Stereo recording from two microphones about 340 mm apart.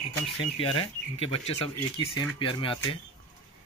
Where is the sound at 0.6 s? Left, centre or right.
Centre.